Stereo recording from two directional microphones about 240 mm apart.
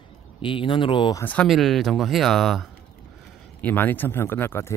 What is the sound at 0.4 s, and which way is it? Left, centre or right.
Speech, left.